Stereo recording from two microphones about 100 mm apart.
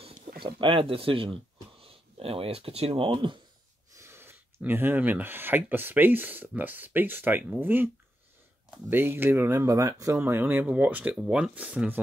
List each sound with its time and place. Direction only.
0.6 s speech: 60° right (ahead or behind)
3.9 s speech: 25° right (ahead or behind)
8.9 s speech: 20° right (ahead or behind)